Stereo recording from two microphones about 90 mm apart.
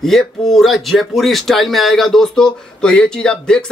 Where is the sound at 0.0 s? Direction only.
5° left (ahead or behind).